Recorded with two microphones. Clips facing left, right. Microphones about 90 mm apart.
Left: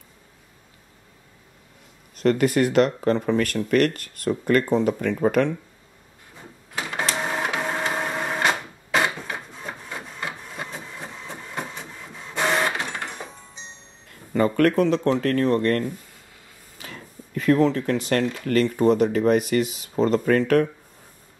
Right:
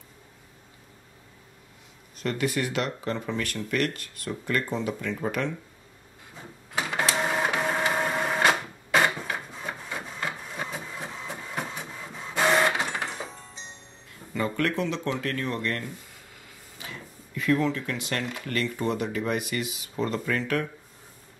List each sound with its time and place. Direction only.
2.1 s speech: 50° left (ahead or behind)
7.0 s printer: centre (ahead or behind)
14.3 s speech: 50° left (ahead or behind)
16.8 s a sound: 50° left (ahead or behind)
18.5 s speech: 40° left (ahead or behind)